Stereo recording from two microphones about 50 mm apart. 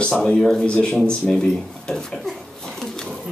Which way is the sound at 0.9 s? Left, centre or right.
Centre.